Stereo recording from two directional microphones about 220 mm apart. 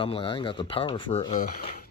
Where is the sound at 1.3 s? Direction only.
35° left (ahead or behind).